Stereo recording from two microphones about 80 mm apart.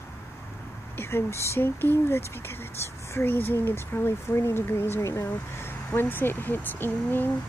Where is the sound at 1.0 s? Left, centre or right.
Left.